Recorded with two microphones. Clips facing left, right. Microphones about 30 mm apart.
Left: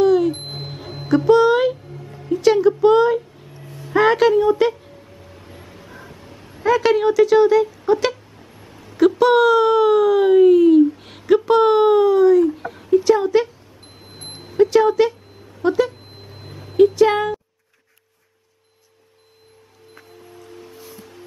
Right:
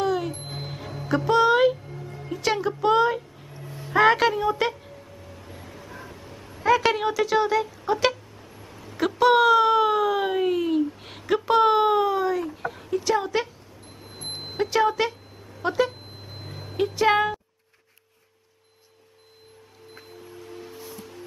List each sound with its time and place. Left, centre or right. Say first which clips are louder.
0.0 s music: left 10 dB; centre
0.6 s music: left 3 dB; centre
1.0 s music: left 6 dB; centre
3.9 s a woman's voice: left 4 dB; centre
5.5 s music: left 1 dB; centre
6.1 s a sound: left 1 dB; centre
6.7 s speech: left 5 dB; centre
14.6 s speech: left 8 dB; centre
20.7 s music: even; centre